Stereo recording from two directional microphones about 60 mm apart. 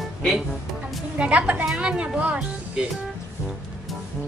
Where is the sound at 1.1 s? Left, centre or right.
Right.